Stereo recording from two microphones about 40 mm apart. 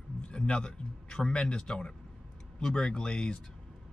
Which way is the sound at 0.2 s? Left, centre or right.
Left.